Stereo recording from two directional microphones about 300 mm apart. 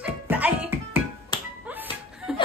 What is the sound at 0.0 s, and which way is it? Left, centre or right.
Music, centre.